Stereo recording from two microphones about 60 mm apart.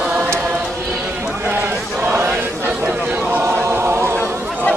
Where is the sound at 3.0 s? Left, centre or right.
Right.